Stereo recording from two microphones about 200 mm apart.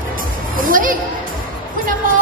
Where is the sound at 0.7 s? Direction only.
45° right (ahead or behind).